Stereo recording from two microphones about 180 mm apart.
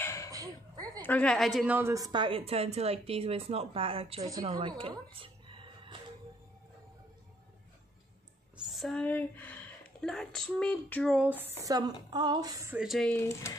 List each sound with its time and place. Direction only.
0.0 s a sound: 15° left (ahead or behind)
0.3 s a sound: 20° right (ahead or behind)
1.0 s a woman's voice: 5° left (ahead or behind)
1.8 s speech: 15° right (ahead or behind)
5.1 s music: 30° right (ahead or behind)
8.6 s speech: centre (ahead or behind)
11.2 s speech: 10° right (ahead or behind)
12.7 s speech: centre (ahead or behind); by 13.6 s 15° left (ahead or behind)